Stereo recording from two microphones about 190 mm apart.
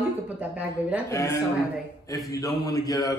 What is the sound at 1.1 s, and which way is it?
Mantra, 15° left (ahead or behind).